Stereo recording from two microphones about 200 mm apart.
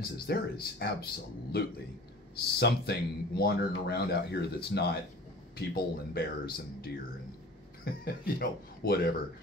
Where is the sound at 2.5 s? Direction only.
55° left (ahead or behind).